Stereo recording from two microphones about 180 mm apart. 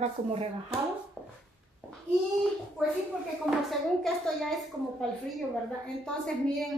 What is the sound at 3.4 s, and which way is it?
Speech, centre (ahead or behind).